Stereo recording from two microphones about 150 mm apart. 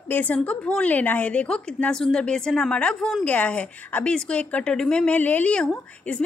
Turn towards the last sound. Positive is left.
turn(degrees=10)  # may be behind; listen again after turning